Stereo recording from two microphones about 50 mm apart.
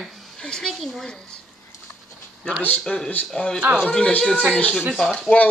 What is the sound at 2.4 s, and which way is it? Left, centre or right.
Speech, left.